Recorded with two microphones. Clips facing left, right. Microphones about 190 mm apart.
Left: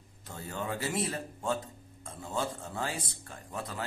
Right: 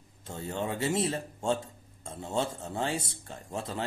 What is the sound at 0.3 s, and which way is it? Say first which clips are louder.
A man's voice: right 3 dB; 25° right (ahead or behind).